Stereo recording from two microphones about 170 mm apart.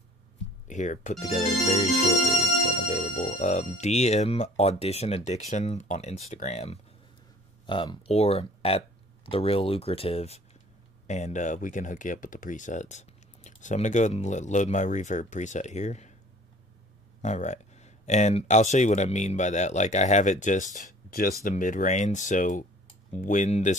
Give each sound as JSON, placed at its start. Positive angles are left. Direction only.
{"t": 0.7, "sound": "speech", "side_deg": 45}
{"t": 7.6, "sound": "speech", "side_deg": 25}
{"t": 17.2, "sound": "speech", "side_deg": 45}